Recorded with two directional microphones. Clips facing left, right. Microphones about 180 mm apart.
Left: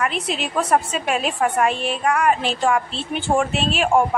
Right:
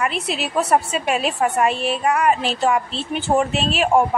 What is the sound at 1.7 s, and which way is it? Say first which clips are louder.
Speech: right 2 dB; 40° right (ahead or behind).